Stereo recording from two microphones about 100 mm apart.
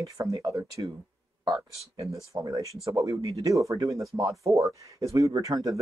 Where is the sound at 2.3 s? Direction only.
35° right (ahead or behind).